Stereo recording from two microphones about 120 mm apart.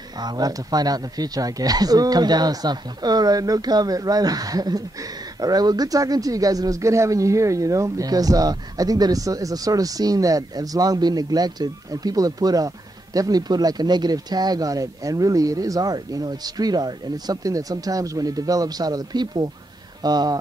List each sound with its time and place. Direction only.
0.2 s speech: 35° right (ahead or behind)